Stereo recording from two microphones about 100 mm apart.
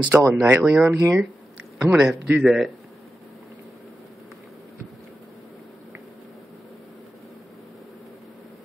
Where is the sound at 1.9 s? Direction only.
10° right (ahead or behind).